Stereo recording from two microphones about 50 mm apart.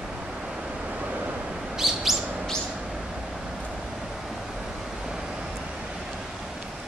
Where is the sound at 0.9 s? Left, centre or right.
Right.